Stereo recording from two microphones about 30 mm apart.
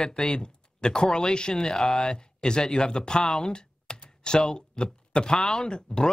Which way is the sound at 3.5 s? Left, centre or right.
Left.